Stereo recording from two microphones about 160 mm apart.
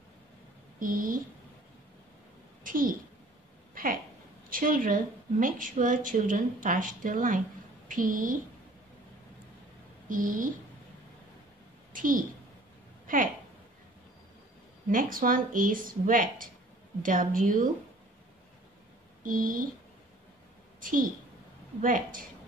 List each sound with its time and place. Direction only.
0.7 s a woman's voice: 60° right (ahead or behind)
2.6 s a sound: 60° right (ahead or behind)
4.5 s a woman's voice: 60° right (ahead or behind)
10.0 s a woman's voice: 55° right (ahead or behind)
11.9 s a sound: 55° right (ahead or behind)
14.9 s a woman's voice: 60° right (ahead or behind)
19.2 s a woman's voice: 60° right (ahead or behind)
21.8 s a woman's voice: 55° right (ahead or behind)